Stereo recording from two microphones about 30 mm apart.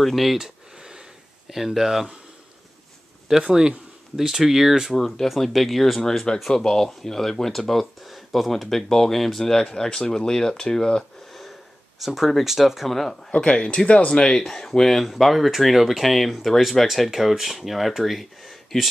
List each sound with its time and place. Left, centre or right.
0.0 s speech: centre
0.7 s sniff: right
1.5 s speech: centre
3.3 s speech: centre
5.4 s speech: centre
6.5 s speech: centre
8.0 s speech: centre
8.6 s speech: centre; by 11.1 s left
12.0 s speech: centre
12.9 s speech: centre
13.4 s speech: left
14.4 s speech: centre
16.8 s speech: centre